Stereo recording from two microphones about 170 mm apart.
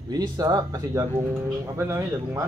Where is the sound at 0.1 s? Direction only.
25° right (ahead or behind).